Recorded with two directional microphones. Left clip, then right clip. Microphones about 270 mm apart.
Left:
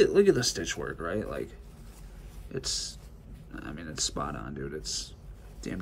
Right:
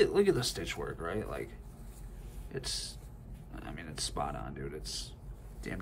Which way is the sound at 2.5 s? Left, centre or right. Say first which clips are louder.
Left 5 dB; centre.